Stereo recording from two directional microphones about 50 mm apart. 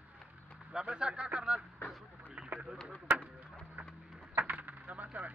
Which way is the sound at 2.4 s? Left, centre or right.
Centre.